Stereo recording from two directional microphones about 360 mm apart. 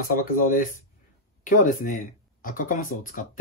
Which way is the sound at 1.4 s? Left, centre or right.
Left.